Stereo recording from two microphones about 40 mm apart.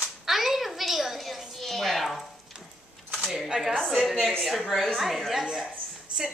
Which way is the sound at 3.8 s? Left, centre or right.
Centre.